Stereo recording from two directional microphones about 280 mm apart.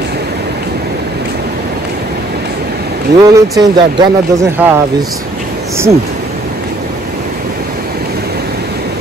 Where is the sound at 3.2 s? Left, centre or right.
Centre.